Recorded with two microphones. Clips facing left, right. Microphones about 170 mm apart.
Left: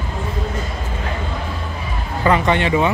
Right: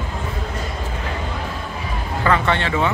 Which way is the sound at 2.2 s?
15° left (ahead or behind).